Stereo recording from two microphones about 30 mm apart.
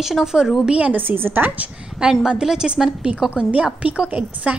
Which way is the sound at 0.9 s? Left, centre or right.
Right.